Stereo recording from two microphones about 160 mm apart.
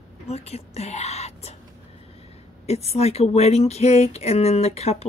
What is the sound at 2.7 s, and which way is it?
Speech, 40° left (ahead or behind).